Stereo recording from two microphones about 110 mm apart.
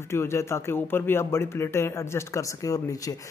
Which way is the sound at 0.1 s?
25° left (ahead or behind).